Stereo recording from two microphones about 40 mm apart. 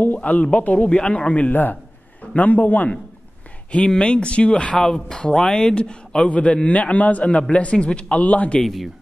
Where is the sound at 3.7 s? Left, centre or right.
Left.